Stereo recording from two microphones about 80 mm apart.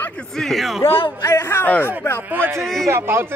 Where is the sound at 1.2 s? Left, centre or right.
Left.